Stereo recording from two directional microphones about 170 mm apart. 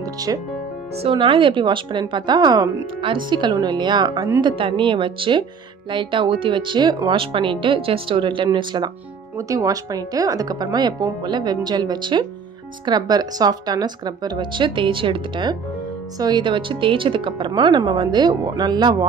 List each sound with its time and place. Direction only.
0.3 s speech: 25° right (ahead or behind)